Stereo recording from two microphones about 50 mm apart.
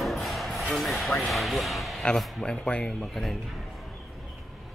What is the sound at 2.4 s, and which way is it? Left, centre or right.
Speech, centre.